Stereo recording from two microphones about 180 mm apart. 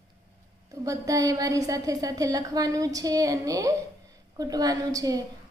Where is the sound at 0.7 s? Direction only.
20° right (ahead or behind).